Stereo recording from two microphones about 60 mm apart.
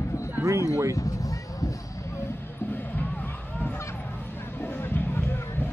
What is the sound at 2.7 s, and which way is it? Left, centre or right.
Music, left.